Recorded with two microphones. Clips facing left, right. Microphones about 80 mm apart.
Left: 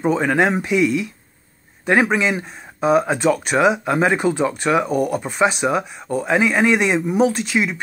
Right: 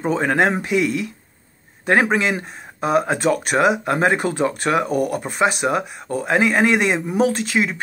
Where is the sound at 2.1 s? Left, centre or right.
Right.